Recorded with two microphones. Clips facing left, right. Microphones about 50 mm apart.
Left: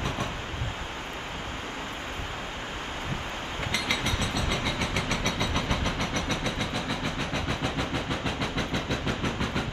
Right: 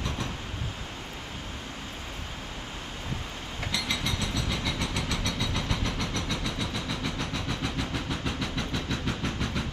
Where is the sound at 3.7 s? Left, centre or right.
Left.